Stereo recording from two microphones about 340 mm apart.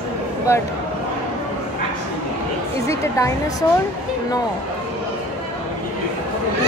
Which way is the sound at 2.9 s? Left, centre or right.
Centre.